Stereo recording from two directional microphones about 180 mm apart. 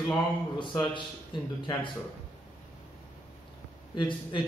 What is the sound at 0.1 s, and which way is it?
Speech, 25° left (ahead or behind).